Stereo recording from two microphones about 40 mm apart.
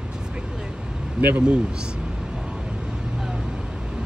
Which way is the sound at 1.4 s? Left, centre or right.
Right.